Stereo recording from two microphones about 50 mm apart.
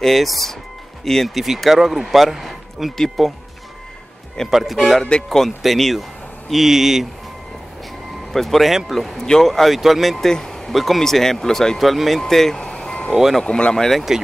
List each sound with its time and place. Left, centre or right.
0.0 s speech: centre
4.5 s speech: centre
5.0 s speech: centre
5.4 s speech: centre
8.3 s speech: centre
13.1 s speech: centre
13.4 s speech: centre
14.1 s speech: centre